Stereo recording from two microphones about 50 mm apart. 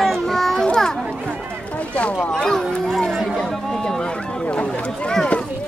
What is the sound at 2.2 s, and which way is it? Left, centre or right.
Speech, centre.